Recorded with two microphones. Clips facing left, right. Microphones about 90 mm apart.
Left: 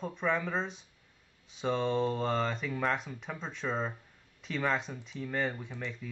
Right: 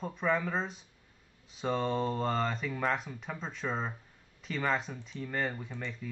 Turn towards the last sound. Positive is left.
turn(degrees=0)  # may be behind; listen again after turning